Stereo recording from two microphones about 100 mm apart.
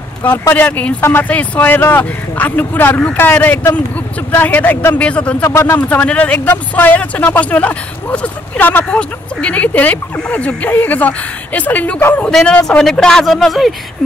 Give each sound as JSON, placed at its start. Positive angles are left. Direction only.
{"t": 0.2, "sound": "speech", "side_deg": 20}
{"t": 5.4, "sound": "speech", "side_deg": 25}
{"t": 5.8, "sound": "speech", "side_deg": 15}